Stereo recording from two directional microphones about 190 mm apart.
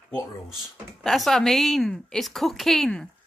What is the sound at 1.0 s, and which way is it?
Speech, centre (ahead or behind).